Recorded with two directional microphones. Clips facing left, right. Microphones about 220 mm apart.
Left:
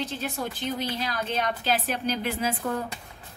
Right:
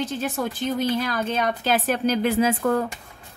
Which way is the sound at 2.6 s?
85° right.